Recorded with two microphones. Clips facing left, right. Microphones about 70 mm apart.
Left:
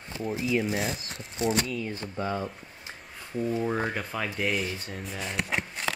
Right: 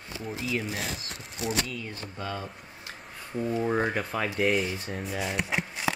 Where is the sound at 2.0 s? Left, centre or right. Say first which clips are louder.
Left 4 dB; left.